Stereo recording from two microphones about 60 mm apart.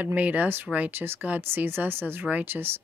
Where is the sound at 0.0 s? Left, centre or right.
Right.